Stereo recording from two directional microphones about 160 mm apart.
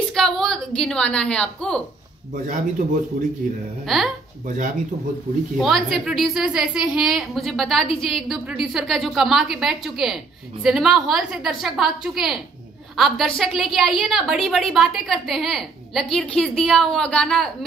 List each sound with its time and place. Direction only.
0.1 s a woman's voice: centre (ahead or behind)
2.3 s speech: 60° right (ahead or behind)
3.8 s a woman's voice: centre (ahead or behind)
4.5 s speech: 55° right (ahead or behind)
5.6 s a woman's voice: centre (ahead or behind)